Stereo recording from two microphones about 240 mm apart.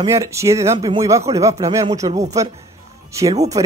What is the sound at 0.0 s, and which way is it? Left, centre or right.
Speech, centre.